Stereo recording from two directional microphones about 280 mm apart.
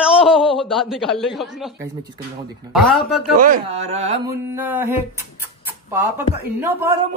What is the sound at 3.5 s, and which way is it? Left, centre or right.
Speech, right.